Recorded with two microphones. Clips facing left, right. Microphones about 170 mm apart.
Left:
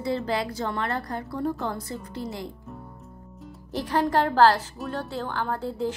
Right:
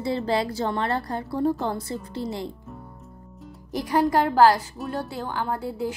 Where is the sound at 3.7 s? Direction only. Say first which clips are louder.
Right 2 dB; 10° right (ahead or behind).